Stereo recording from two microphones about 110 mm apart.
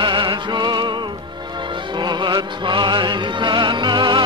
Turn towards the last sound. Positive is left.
turn(degrees=-40)  # may be behind; listen again after turning